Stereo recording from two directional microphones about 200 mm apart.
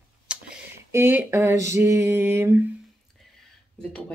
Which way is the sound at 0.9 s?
10° right (ahead or behind).